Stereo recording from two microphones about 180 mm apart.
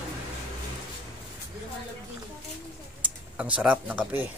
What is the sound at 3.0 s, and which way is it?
Speech, 5° right (ahead or behind).